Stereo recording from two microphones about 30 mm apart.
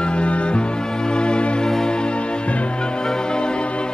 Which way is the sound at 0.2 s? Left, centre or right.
Left.